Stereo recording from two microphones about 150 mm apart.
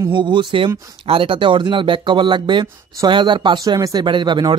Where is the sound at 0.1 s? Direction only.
30° right (ahead or behind).